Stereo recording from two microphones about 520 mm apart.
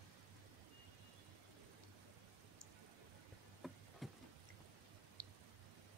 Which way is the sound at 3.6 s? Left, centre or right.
Centre.